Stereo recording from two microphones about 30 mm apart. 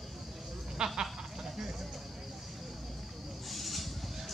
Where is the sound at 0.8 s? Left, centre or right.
Right.